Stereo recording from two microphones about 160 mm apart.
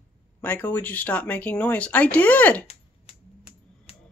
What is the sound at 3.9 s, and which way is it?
Music, 40° left (ahead or behind).